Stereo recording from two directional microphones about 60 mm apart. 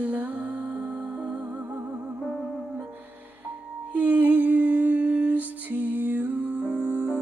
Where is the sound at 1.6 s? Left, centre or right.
Right.